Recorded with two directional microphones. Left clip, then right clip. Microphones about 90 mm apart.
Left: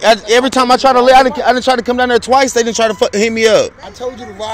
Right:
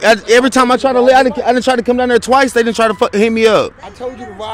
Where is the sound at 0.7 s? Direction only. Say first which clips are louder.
Left 4 dB; 80° right; by 3.6 s 60° right (ahead or behind).